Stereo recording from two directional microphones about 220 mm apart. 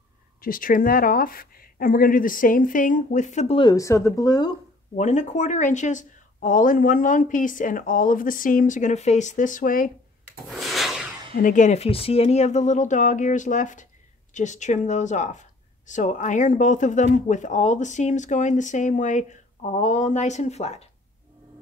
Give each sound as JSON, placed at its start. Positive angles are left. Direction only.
{"t": 0.4, "sound": "speech", "side_deg": 40}
{"t": 4.9, "sound": "speech", "side_deg": 35}
{"t": 10.5, "sound": "a sound", "side_deg": 0}
{"t": 11.3, "sound": "speech", "side_deg": 35}